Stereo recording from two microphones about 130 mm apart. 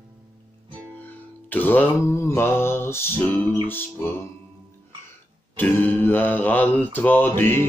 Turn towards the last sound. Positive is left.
turn(degrees=15)  # may be behind; listen again after turning